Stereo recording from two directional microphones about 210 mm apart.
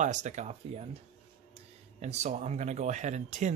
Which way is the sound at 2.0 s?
30° right (ahead or behind).